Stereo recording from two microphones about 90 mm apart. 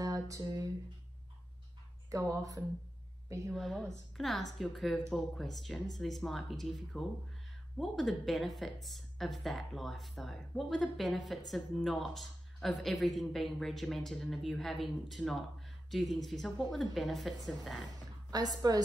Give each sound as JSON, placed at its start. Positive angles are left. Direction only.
{"t": 0.0, "sound": "a sound", "side_deg": -40}
{"t": 2.0, "sound": "a woman's voice", "side_deg": -40}
{"t": 3.5, "sound": "speech", "side_deg": 0}
{"t": 18.3, "sound": "a woman's voice", "side_deg": -45}